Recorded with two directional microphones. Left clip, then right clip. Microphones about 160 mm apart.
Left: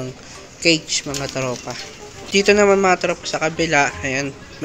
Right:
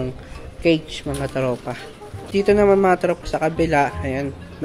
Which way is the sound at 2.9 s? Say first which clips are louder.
Left 1 dB; 30° right (ahead or behind).